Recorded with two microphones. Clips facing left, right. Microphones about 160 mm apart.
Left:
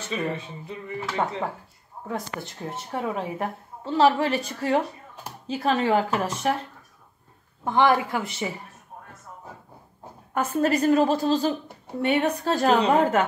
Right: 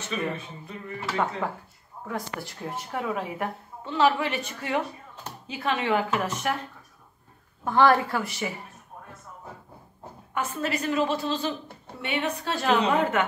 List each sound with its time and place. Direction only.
0.1 s a woman's voice: 20° left (ahead or behind)
2.0 s speech: 25° left (ahead or behind)
7.6 s a woman's voice: 20° left (ahead or behind)
10.3 s speech: 45° left (ahead or behind)